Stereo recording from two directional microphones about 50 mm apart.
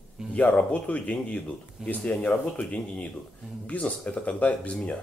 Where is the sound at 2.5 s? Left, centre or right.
Left.